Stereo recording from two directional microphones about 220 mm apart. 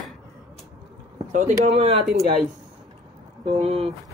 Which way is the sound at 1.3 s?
30° right (ahead or behind).